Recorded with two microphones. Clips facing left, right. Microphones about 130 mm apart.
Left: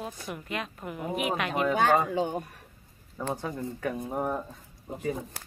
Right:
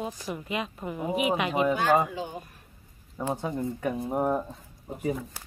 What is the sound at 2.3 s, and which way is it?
Speech, 65° left (ahead or behind).